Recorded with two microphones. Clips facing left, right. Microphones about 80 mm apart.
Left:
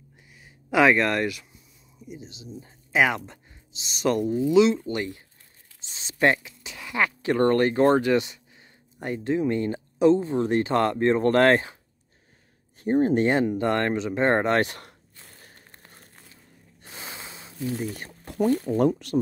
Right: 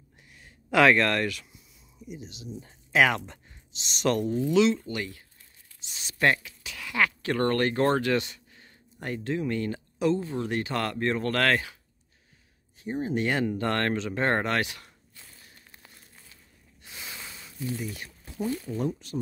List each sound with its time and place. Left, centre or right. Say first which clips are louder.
0.3 s a sound: left 1 dB; centre
2.0 s speech: even; centre
4.6 s speech: left 4 dB; centre
4.8 s speech: left 5 dB; left
12.8 s speech: left 9 dB; left
13.2 s speech: left 5 dB; left
14.6 s speech: left 5 dB; left
15.2 s a sound: left 5 dB; left
16.8 s snort: left 3 dB; left
17.7 s speech: left 4 dB; left
18.2 s speech: left 8 dB; left